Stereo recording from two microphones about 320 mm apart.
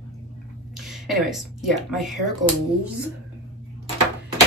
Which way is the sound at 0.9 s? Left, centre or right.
Centre.